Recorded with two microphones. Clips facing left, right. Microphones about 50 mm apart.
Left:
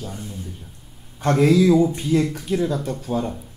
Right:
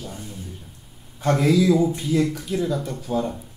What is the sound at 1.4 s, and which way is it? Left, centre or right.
Speech, left.